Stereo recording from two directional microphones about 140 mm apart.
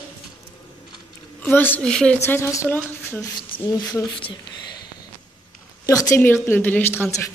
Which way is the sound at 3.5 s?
90° left.